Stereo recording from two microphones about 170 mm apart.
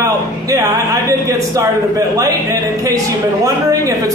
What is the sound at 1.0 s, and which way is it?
Speech, 20° right (ahead or behind).